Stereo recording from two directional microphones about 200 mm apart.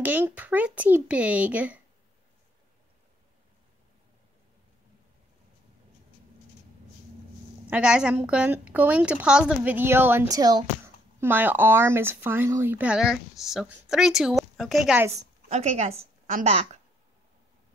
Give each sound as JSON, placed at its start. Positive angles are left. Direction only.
{"t": 0.0, "sound": "speech", "side_deg": -10}
{"t": 7.7, "sound": "speech", "side_deg": -5}
{"t": 15.1, "sound": "a woman's voice", "side_deg": -35}